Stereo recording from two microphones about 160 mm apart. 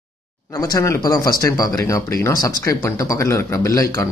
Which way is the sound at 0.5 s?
20° left (ahead or behind).